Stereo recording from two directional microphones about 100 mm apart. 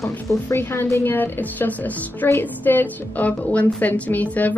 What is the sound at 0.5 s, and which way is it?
A woman's voice, 25° left (ahead or behind).